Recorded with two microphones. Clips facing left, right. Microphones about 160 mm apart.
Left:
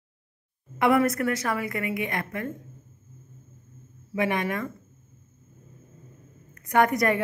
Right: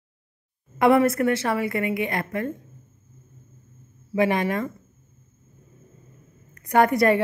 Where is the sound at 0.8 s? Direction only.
30° right (ahead or behind).